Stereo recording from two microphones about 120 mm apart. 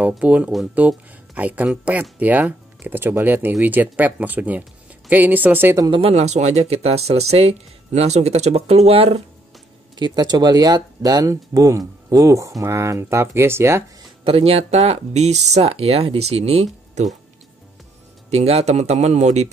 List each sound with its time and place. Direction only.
0.0 s speech: 10° right (ahead or behind)
5.9 s speech: 55° right (ahead or behind)
9.9 s speech: 35° right (ahead or behind); by 13.8 s 20° right (ahead or behind)
14.2 s speech: 55° right (ahead or behind)
18.3 s speech: 60° right (ahead or behind)